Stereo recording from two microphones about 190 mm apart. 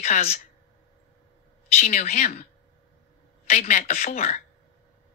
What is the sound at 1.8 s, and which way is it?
Speech, 35° left (ahead or behind).